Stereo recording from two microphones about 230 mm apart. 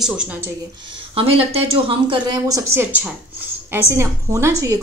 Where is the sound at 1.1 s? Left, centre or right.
Right.